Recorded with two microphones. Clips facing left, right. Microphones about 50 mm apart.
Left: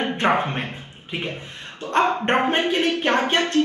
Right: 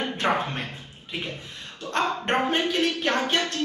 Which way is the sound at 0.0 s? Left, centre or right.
Left.